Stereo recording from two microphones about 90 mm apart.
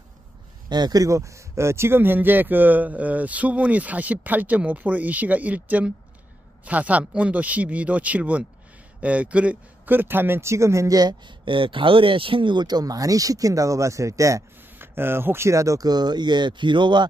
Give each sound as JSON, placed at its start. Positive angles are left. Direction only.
{"t": 0.7, "sound": "speech", "side_deg": -50}
{"t": 14.8, "sound": "speech", "side_deg": -25}